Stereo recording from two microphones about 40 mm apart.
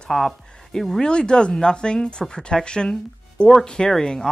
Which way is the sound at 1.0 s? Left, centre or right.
Left.